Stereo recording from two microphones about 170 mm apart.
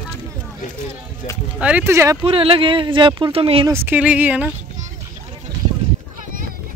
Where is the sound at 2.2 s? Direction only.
35° right (ahead or behind).